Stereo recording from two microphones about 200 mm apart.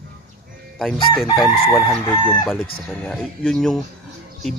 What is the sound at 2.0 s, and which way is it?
Chicken, 15° left (ahead or behind).